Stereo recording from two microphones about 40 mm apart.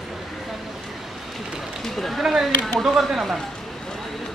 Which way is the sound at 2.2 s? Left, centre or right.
Centre.